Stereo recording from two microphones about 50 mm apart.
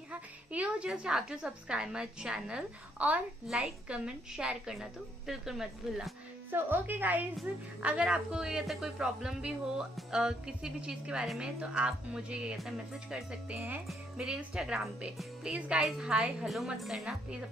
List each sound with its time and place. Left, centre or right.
0.1 s a woman's voice: right
0.8 s speech: centre
6.5 s a woman's voice: right
7.8 s a woman's voice: right
12.5 s speech: centre
13.1 s a woman's voice: centre
16.3 s speech: centre